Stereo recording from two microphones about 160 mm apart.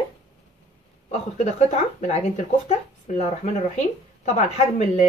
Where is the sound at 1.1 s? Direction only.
45° left (ahead or behind).